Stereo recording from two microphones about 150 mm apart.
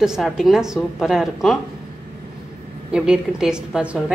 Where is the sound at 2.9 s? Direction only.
5° right (ahead or behind).